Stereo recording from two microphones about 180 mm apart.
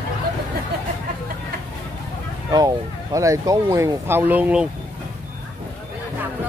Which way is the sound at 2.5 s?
20° right (ahead or behind).